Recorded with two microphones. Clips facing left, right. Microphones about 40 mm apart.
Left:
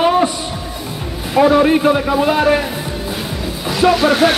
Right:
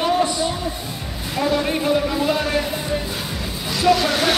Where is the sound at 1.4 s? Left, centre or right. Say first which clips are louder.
Left 9 dB; left.